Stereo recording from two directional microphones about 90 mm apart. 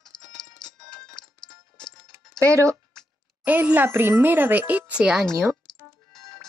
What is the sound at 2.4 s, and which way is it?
Speech, 35° right (ahead or behind).